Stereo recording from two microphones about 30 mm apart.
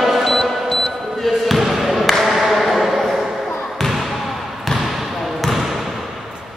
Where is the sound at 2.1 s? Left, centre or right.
Centre.